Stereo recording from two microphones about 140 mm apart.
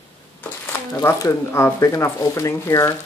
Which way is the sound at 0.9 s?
20° left (ahead or behind).